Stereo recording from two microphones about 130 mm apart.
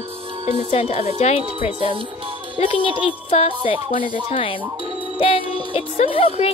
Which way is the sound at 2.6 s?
40° left (ahead or behind).